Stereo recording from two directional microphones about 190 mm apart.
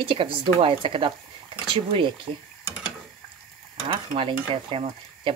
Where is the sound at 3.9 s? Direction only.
30° right (ahead or behind).